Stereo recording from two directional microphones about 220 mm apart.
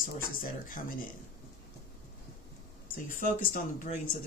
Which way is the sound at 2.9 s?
40° left (ahead or behind).